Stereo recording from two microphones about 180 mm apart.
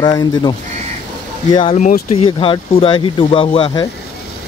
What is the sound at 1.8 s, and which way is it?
Speech, 40° left (ahead or behind).